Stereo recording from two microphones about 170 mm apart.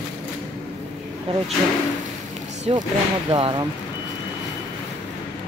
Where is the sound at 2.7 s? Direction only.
35° right (ahead or behind).